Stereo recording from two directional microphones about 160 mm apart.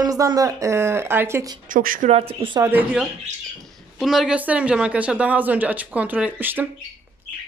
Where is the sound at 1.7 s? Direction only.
60° right (ahead or behind).